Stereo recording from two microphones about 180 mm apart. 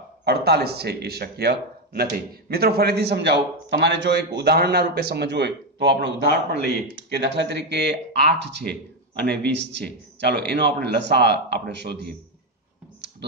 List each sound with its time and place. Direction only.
0.2 s a man's voice: 60° right (ahead or behind)